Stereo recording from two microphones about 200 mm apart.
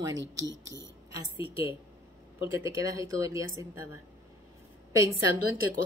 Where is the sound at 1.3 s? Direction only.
25° left (ahead or behind).